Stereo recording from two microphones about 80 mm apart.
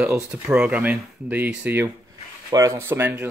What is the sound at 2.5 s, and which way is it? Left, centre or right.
Speech, right.